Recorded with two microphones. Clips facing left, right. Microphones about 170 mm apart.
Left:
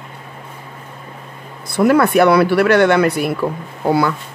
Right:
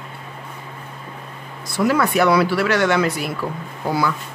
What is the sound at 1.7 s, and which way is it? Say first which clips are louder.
Speech: left 6 dB; 60° left (ahead or behind).